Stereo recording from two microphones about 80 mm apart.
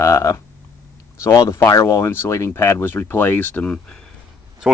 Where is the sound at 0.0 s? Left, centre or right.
Left; by 3.8 s centre.